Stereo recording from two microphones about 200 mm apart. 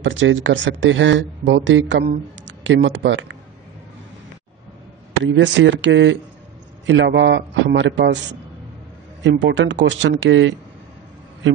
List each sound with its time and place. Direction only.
0.0 s speech: 70° right (ahead or behind)
5.2 s a man's voice: 65° right (ahead or behind)
9.2 s speech: 65° right (ahead or behind)